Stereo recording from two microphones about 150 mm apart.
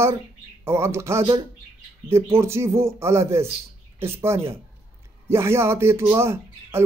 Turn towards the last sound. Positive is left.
turn(degrees=-15)  # may be behind; listen again after turning